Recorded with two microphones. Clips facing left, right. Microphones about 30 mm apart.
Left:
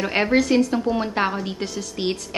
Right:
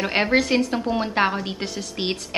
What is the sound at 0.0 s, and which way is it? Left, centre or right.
A woman's voice, centre.